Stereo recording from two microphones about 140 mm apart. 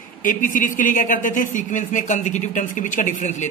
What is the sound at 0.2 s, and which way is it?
A man's voice, 75° left (ahead or behind).